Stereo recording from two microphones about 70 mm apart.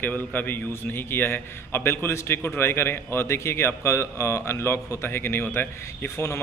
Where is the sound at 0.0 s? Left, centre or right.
Left.